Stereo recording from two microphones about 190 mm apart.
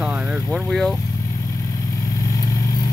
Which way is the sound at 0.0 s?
5° right (ahead or behind).